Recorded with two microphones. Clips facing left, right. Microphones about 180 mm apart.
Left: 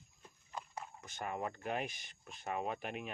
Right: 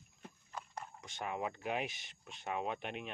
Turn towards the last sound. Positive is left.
turn(degrees=5)  # may be behind; listen again after turning